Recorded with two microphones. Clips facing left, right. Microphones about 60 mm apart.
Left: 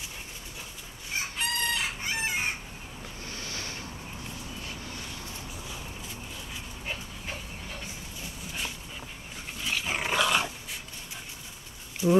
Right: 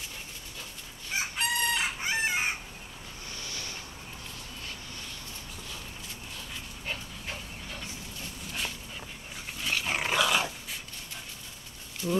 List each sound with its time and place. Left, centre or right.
1.3 s chicken: centre
3.4 s a sound: left
9.6 s dog: centre
12.0 s speech: centre